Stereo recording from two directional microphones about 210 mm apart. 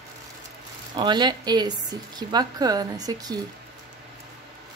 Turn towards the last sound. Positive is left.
turn(degrees=-20)  # may be behind; listen again after turning